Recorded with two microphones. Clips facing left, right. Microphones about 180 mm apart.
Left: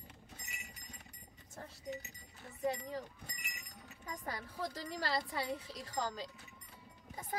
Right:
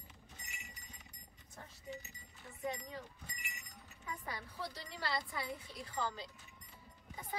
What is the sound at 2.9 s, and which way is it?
A woman's voice, 45° left (ahead or behind).